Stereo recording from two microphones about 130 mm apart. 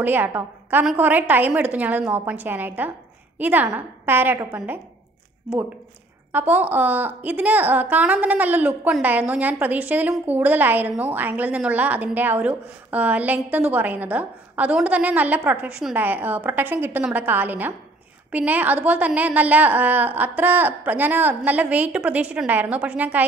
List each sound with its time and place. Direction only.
0.0 s a woman's voice: 15° right (ahead or behind)
6.3 s a woman's voice: 15° right (ahead or behind)